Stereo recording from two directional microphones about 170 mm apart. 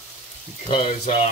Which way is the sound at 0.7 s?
35° left (ahead or behind).